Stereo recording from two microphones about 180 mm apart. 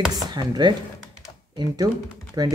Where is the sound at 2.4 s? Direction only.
20° right (ahead or behind).